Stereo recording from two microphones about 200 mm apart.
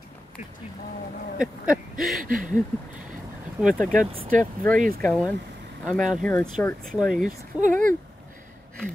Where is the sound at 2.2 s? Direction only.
45° right (ahead or behind).